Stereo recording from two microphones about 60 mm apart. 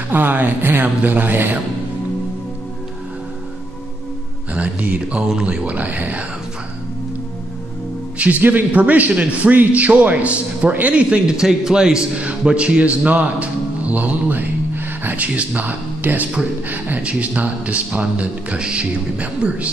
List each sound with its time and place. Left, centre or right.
0.1 s speech: right
4.6 s a man's voice: right
8.2 s a man's voice: right